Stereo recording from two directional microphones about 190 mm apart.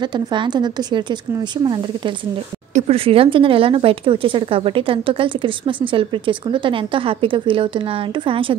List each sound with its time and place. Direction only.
0.3 s speech: 25° right (ahead or behind)
2.7 s speech: 30° right (ahead or behind)